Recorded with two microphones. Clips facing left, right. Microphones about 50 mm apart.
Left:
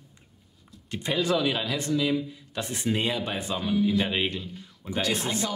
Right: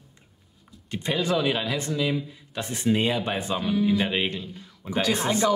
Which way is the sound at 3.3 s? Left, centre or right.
Centre.